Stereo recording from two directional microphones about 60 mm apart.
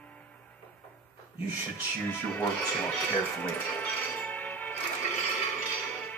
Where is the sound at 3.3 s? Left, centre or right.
Left.